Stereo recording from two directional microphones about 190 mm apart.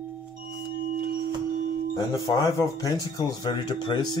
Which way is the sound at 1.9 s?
20° left (ahead or behind).